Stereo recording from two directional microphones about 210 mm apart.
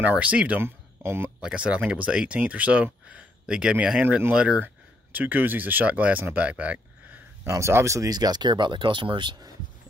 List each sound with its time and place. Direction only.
0.0 s speech: 5° right (ahead or behind); by 9.5 s 20° right (ahead or behind)